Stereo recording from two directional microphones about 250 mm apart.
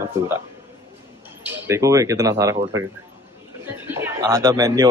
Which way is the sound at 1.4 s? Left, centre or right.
Centre.